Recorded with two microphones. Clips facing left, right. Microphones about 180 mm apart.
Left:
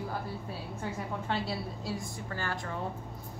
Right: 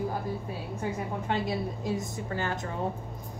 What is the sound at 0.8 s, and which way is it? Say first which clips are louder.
A woman's voice: right 3 dB; 15° right (ahead or behind).